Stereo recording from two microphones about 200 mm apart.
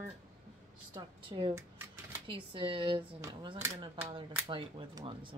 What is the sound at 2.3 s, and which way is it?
Speech, 25° right (ahead or behind).